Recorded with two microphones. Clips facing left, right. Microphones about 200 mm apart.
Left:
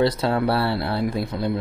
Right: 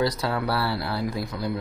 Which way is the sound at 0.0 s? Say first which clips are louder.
Left 5 dB; 25° left (ahead or behind).